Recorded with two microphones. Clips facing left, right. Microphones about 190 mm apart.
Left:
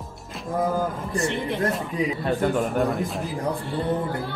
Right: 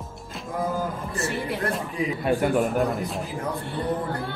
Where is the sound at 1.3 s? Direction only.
5° right (ahead or behind).